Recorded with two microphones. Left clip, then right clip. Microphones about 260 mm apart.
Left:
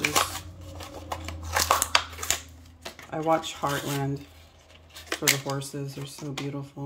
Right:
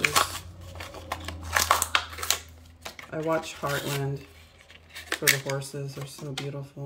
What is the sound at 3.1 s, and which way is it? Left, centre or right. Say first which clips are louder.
Speech: left 3 dB; centre.